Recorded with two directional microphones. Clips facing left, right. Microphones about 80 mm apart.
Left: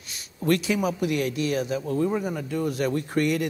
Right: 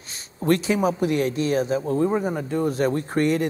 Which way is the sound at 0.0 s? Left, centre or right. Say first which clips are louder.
Right 2 dB; right.